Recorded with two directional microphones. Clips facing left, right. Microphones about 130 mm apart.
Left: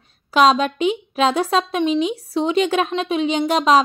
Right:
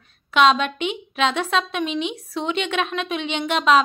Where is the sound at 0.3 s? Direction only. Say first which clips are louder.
Left 2 dB; 35° left (ahead or behind).